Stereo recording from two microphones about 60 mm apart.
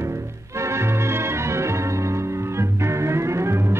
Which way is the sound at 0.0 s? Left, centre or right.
Right.